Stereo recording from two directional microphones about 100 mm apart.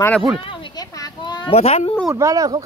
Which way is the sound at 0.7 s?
40° left (ahead or behind).